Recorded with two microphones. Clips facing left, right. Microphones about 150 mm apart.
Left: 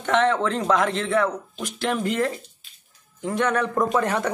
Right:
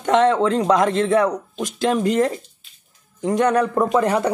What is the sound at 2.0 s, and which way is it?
Speech, 20° right (ahead or behind).